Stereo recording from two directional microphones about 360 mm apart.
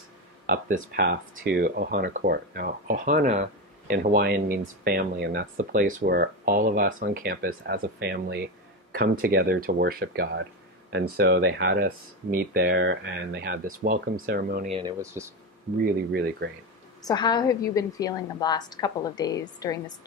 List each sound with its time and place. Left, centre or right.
0.7 s speech: right; by 15.3 s centre
15.8 s speech: right
17.0 s a woman's voice: centre